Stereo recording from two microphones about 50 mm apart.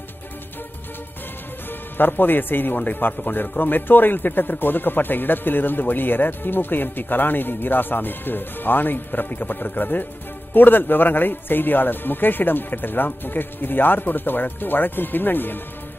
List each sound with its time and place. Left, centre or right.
2.0 s a man's voice: left